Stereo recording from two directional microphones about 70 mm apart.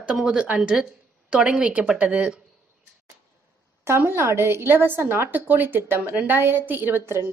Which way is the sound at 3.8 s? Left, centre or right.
Right.